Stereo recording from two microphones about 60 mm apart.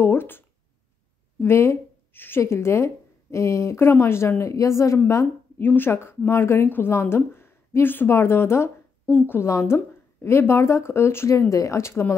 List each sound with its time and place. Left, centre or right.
0.0 s a sound: left
1.4 s a woman's voice: left
2.4 s a woman's voice: left
4.9 s a woman's voice: left
9.5 s a woman's voice: left
11.3 s speech: left